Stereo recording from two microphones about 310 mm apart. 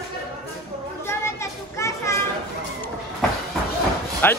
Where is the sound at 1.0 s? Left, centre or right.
Centre.